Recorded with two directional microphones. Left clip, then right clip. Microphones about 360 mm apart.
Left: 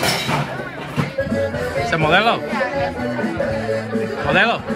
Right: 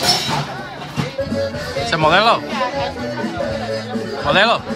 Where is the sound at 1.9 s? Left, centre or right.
Centre.